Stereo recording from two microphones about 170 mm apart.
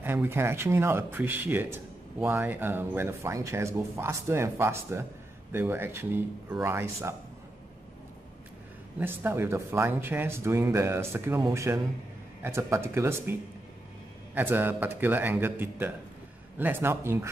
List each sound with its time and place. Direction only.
0.0 s speech: 15° right (ahead or behind)
9.0 s speech: 15° right (ahead or behind)